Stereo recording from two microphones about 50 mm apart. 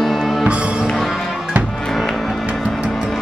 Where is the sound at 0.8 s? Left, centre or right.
Centre.